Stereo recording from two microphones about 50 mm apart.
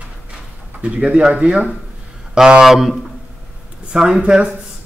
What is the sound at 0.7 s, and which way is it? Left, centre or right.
A man's voice, right.